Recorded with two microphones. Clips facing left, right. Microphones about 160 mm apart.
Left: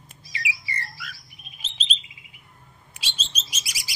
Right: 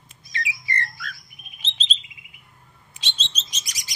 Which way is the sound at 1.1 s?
30° left (ahead or behind).